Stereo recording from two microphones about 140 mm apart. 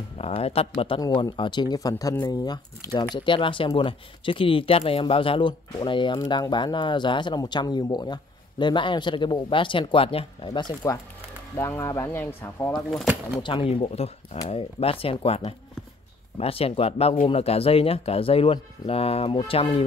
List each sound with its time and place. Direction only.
0.2 s speech: 45° left (ahead or behind)
1.0 s speech: 25° left (ahead or behind)
1.3 s speech: 35° left (ahead or behind)
11.5 s speech: 20° left (ahead or behind)
13.4 s speech: 40° left (ahead or behind)